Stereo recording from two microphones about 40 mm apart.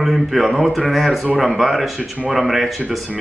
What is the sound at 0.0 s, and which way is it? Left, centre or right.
A man's voice, centre.